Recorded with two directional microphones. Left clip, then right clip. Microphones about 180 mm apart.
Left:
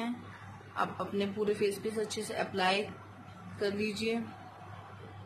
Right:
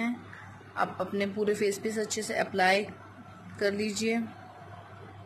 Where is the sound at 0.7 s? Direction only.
15° right (ahead or behind).